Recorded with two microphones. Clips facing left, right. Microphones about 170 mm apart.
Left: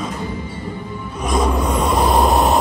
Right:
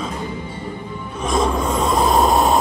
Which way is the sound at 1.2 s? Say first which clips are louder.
Even; 10° left (ahead or behind).